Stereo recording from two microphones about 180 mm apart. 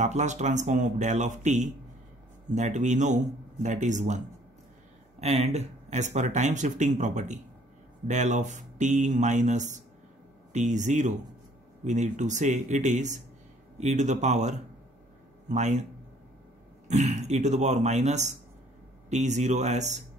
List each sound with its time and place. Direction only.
0.0 s speech: 40° right (ahead or behind)
5.2 s speech: 35° right (ahead or behind)